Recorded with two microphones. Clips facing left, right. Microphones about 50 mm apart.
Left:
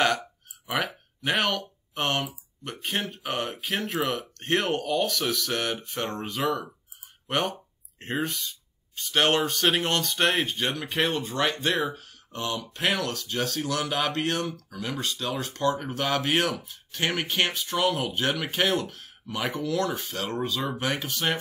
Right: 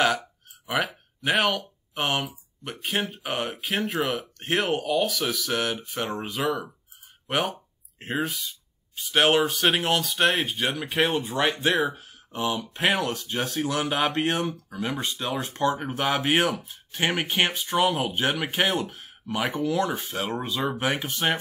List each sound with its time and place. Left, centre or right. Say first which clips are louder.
0.0 s speech: right 1 dB; centre